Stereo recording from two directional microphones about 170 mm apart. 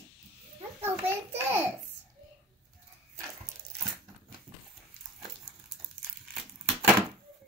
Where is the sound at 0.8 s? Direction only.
10° right (ahead or behind).